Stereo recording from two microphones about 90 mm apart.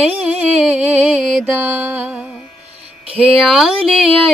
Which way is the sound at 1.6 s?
20° right (ahead or behind).